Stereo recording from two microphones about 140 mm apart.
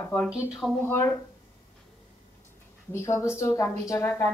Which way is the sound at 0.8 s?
20° left (ahead or behind).